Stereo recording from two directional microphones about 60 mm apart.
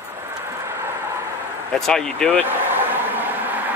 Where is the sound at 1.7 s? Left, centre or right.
Centre.